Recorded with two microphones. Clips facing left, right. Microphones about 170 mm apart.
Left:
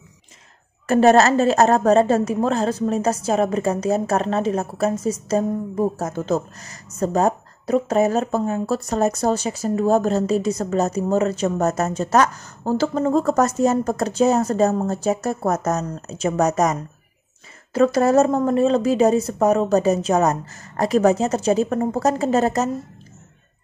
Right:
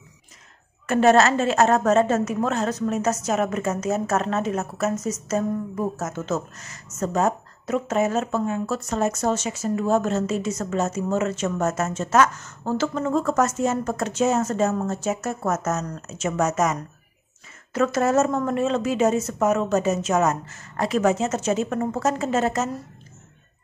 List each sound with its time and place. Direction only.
0.8 s a woman's voice: 35° left (ahead or behind)